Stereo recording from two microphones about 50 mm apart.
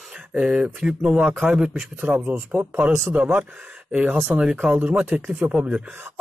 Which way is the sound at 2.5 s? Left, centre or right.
Right.